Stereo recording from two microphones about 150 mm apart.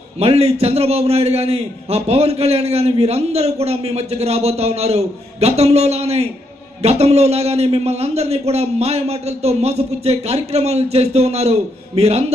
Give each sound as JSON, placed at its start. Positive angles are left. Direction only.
{"t": 0.2, "sound": "a man's voice", "side_deg": -40}